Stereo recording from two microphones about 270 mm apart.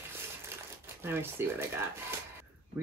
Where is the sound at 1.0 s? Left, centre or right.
Centre.